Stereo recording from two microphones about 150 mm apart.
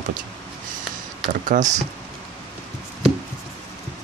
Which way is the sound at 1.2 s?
60° right (ahead or behind).